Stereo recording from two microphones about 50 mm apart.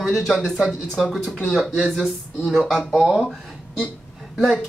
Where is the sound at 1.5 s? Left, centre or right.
Centre.